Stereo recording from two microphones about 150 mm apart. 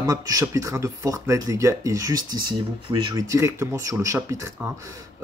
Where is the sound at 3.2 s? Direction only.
20° right (ahead or behind).